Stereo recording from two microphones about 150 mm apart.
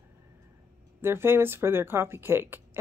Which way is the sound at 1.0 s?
15° right (ahead or behind).